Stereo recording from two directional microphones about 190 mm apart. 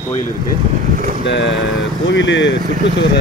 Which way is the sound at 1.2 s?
70° left (ahead or behind).